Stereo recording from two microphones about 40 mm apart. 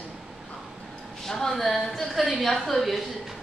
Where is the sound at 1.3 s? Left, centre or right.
Centre.